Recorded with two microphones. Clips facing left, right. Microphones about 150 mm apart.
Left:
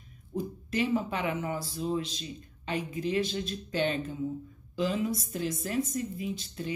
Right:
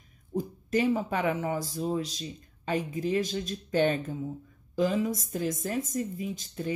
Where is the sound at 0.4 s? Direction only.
45° right (ahead or behind).